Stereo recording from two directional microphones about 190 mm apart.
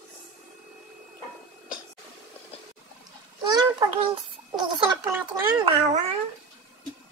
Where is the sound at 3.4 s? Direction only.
20° right (ahead or behind).